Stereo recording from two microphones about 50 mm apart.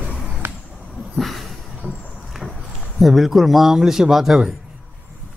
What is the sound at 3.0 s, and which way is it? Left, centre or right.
Speech, centre.